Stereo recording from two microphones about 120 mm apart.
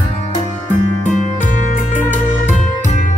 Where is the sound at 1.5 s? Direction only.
90° left.